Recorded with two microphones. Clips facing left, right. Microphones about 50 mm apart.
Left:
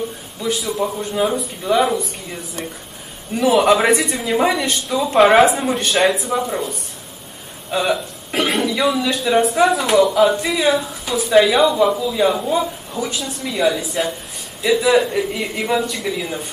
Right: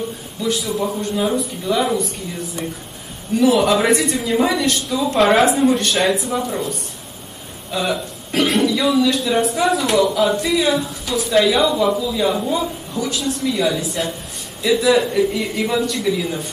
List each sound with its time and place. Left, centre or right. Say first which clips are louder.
0.5 s speech: even; centre
3.4 s speech: left 2 dB; centre
7.7 s speech: left 2 dB; centre
9.2 s speech: left 3 dB; centre
12.4 s a man's voice: left 1 dB; centre